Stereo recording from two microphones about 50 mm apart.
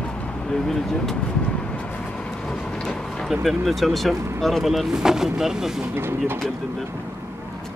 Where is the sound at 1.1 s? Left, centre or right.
Left.